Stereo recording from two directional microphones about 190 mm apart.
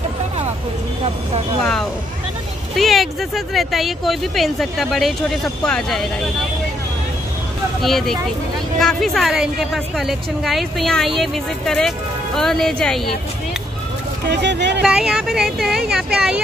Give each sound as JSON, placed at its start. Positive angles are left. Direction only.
{"t": 1.6, "sound": "a woman's voice", "side_deg": 5}
{"t": 7.8, "sound": "a woman's voice", "side_deg": 0}
{"t": 14.2, "sound": "speech", "side_deg": -65}
{"t": 14.8, "sound": "a woman's voice", "side_deg": -5}